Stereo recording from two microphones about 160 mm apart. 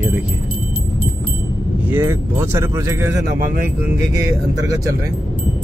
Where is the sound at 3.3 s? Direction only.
65° right (ahead or behind).